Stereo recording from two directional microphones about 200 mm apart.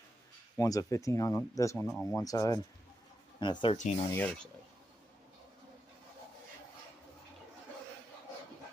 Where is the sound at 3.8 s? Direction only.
35° left (ahead or behind).